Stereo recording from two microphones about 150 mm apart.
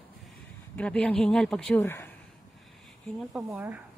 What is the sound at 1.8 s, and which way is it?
Speech, 15° left (ahead or behind).